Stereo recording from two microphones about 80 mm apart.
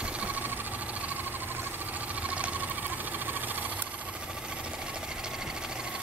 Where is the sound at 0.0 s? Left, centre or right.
Centre.